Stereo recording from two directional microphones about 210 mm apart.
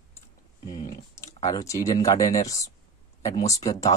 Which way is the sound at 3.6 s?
15° left (ahead or behind).